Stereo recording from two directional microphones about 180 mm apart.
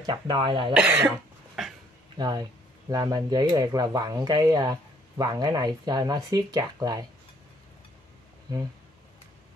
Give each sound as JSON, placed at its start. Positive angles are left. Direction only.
{"t": 0.0, "sound": "speech", "side_deg": -25}
{"t": 0.7, "sound": "cough", "side_deg": -5}
{"t": 2.1, "sound": "speech", "side_deg": -20}